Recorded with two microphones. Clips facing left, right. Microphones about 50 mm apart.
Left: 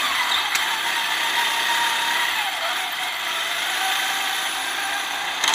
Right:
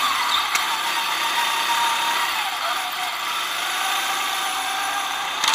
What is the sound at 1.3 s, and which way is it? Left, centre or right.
Vehicle, left.